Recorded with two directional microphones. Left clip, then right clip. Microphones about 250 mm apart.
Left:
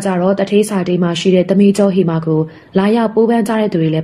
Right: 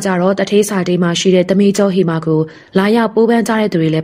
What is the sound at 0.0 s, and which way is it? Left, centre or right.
A woman's voice, right.